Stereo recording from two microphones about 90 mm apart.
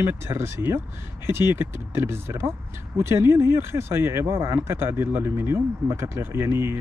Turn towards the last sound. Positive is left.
turn(degrees=-25)  # may be behind; listen again after turning